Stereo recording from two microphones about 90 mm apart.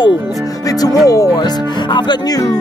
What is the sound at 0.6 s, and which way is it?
Speech, 40° left (ahead or behind).